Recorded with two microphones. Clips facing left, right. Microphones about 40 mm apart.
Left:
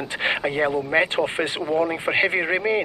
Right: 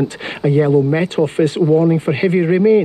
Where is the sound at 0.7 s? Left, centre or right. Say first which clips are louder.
Right 11 dB; centre.